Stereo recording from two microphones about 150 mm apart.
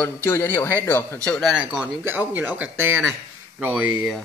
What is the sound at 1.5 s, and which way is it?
Speech, 5° right (ahead or behind).